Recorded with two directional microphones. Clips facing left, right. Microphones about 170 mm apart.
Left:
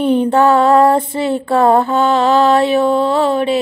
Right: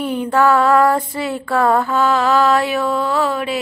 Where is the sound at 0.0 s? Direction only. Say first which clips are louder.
Left 5 dB; 25° left (ahead or behind).